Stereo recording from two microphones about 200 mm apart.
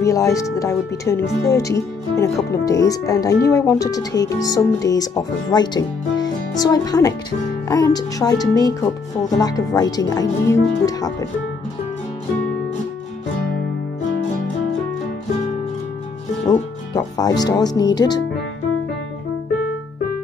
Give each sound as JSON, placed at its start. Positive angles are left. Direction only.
{"t": 0.0, "sound": "speech", "side_deg": 15}
{"t": 16.4, "sound": "speech", "side_deg": 20}